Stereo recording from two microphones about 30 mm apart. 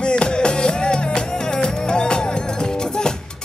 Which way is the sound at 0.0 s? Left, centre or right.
Left.